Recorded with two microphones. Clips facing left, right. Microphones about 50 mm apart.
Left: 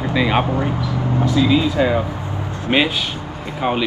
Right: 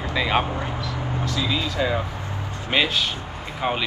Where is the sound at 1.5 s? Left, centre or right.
Left.